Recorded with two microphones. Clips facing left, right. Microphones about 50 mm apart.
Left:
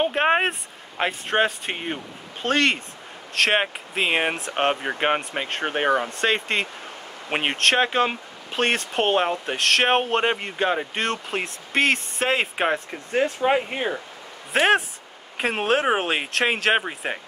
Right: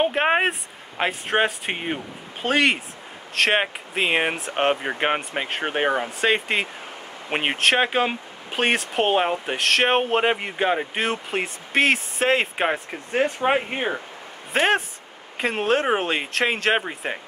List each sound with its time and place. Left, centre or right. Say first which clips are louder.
0.0 s speech: even; centre
13.2 s speech: even; right
14.5 s speech: left 1 dB; centre